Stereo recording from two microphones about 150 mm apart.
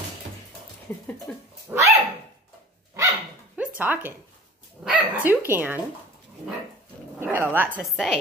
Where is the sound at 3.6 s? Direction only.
10° right (ahead or behind).